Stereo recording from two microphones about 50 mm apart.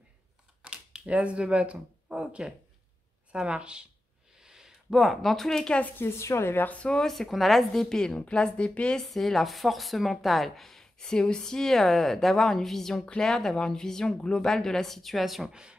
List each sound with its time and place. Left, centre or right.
0.6 s computer keyboard: centre
1.1 s speech: right
4.4 s a sound: centre
4.9 s speech: centre
5.9 s a woman's voice: left
6.6 s speech: left
6.9 s speech: centre
9.1 s speech: centre
13.0 s speech: left
13.3 s speech: centre